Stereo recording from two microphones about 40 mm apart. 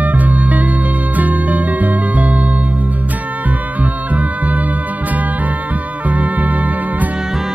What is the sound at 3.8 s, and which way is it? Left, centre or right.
Music, right.